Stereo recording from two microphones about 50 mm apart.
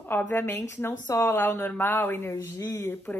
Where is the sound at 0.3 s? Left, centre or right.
Left.